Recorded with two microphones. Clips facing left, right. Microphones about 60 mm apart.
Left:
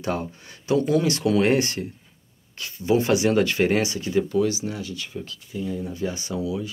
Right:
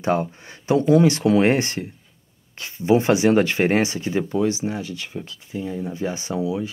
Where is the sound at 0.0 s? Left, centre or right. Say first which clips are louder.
Right 6 dB; right.